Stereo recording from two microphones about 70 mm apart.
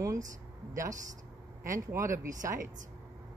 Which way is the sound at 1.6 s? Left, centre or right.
Right.